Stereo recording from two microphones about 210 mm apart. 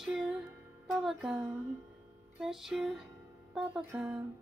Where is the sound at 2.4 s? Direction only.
Centre (ahead or behind).